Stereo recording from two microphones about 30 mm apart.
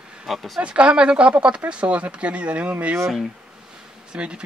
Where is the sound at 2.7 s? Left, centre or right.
Right.